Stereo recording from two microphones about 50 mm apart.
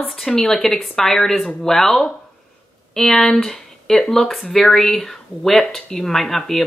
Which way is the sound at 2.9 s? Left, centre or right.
Centre.